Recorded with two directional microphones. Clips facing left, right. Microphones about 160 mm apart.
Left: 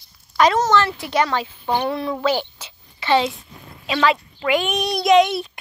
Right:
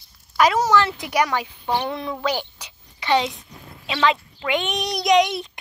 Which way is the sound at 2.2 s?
15° right (ahead or behind).